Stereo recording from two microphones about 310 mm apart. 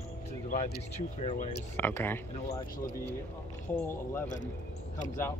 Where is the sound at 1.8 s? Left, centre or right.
Centre.